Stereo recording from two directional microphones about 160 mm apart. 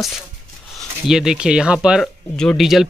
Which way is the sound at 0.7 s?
Centre (ahead or behind).